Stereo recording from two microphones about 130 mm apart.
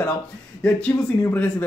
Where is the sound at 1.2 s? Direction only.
10° left (ahead or behind).